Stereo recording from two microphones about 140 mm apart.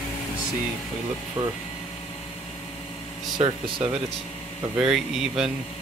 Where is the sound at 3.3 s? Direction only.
35° right (ahead or behind).